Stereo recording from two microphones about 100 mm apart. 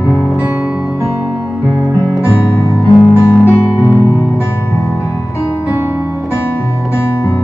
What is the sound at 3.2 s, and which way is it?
Music, 25° left (ahead or behind).